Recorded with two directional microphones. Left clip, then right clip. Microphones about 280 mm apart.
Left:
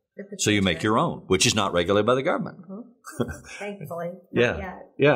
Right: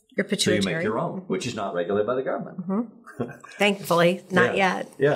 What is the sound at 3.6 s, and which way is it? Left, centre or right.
Speech, right.